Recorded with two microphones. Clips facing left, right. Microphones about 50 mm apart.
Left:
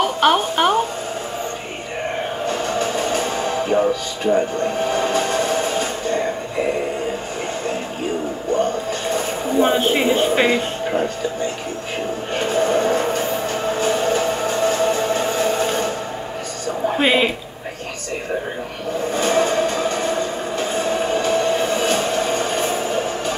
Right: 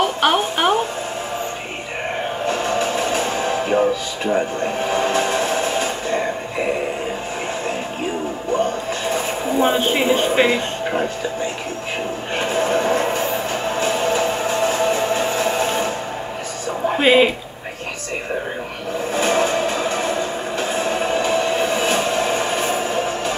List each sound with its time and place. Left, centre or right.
0.0 s music: centre
3.1 s music: right
4.3 s speech: centre
5.6 s music: right
9.6 s speech: centre
12.6 s music: right
14.0 s a sound: right
14.9 s train: right
17.0 s speech: centre
19.1 s vehicle: centre
20.8 s music: right
21.6 s train: centre